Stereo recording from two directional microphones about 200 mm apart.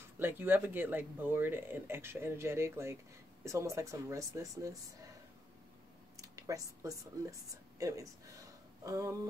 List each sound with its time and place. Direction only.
0.2 s speech: 10° right (ahead or behind)
6.2 s speech: 15° right (ahead or behind)